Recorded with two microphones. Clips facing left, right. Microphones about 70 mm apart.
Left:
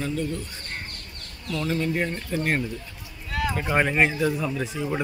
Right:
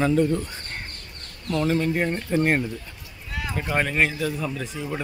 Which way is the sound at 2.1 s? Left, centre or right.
Right.